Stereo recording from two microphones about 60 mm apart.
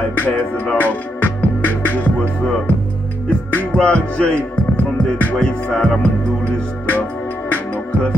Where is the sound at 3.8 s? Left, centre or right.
Centre.